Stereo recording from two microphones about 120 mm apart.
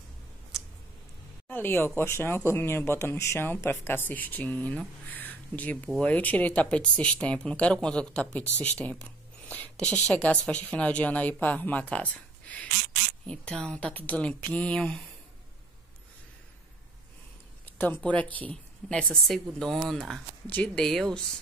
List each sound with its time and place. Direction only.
1.5 s a woman's voice: 20° left (ahead or behind)
17.6 s a woman's voice: 15° left (ahead or behind)